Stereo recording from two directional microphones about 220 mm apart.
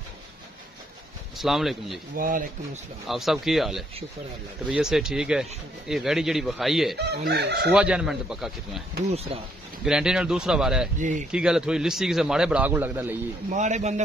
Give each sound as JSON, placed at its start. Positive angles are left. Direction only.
{"t": 1.4, "sound": "speech", "side_deg": 0}
{"t": 2.1, "sound": "speech", "side_deg": -40}
{"t": 3.1, "sound": "speech", "side_deg": 0}
{"t": 7.0, "sound": "chicken", "side_deg": -50}
{"t": 7.7, "sound": "speech", "side_deg": -5}
{"t": 9.1, "sound": "speech", "side_deg": -25}
{"t": 9.8, "sound": "speech", "side_deg": -5}
{"t": 11.0, "sound": "speech", "side_deg": -35}
{"t": 11.3, "sound": "speech", "side_deg": -5}
{"t": 13.5, "sound": "speech", "side_deg": -30}